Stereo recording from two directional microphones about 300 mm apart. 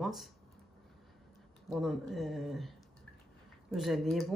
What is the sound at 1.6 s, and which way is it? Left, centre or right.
Speech, centre.